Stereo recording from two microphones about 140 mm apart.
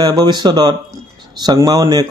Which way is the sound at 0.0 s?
30° right (ahead or behind).